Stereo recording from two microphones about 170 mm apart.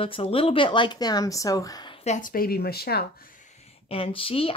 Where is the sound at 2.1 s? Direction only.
55° left (ahead or behind).